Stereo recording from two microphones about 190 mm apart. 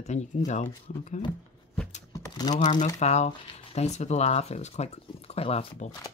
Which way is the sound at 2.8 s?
35° left (ahead or behind).